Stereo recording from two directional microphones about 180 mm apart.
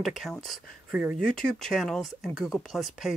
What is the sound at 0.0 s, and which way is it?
Speech, centre (ahead or behind).